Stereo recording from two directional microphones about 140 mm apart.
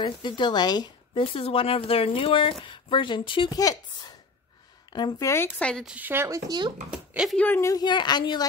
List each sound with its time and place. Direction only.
0.0 s speech: 30° left (ahead or behind)
5.3 s speech: 10° left (ahead or behind)
5.9 s speech: 10° right (ahead or behind); by 6.7 s 30° right (ahead or behind)
7.3 s speech: 15° left (ahead or behind)
7.7 s speech: 30° left (ahead or behind)